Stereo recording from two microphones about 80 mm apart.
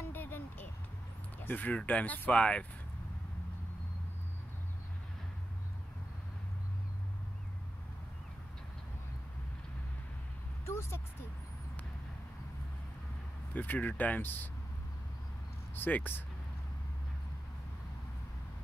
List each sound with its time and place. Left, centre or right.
0.0 s vehicle: left
1.4 s speech: left
10.6 s vehicle: left
13.5 s speech: left
15.7 s speech: left